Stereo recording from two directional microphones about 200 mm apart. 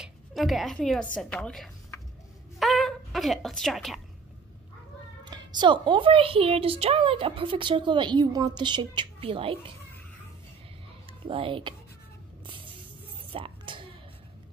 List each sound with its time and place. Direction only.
0.0 s a woman's voice: centre (ahead or behind)
2.6 s a sound: centre (ahead or behind)
5.2 s a woman's voice: 20° right (ahead or behind)
11.1 s speech: 25° right (ahead or behind)
13.3 s music: 25° right (ahead or behind)